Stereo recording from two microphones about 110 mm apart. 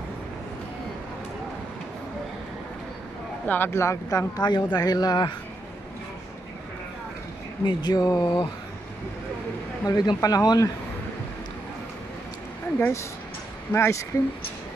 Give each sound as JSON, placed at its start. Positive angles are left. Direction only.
{"t": 3.4, "sound": "speech", "side_deg": 20}
{"t": 4.4, "sound": "speech", "side_deg": 40}
{"t": 7.6, "sound": "speech", "side_deg": 40}
{"t": 9.8, "sound": "speech", "side_deg": 35}
{"t": 12.7, "sound": "speech", "side_deg": 15}